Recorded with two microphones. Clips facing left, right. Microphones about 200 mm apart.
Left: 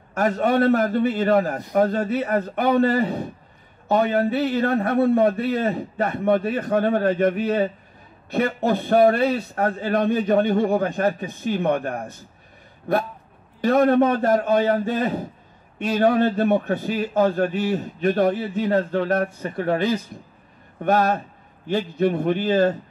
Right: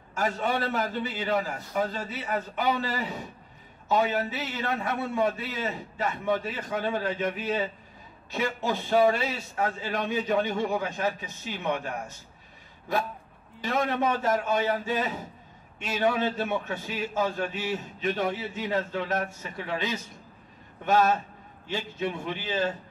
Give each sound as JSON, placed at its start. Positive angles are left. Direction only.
{"t": 0.1, "sound": "a man's voice", "side_deg": 60}
{"t": 13.6, "sound": "a man's voice", "side_deg": 55}